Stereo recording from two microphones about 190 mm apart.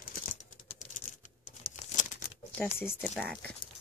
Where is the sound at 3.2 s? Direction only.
5° left (ahead or behind).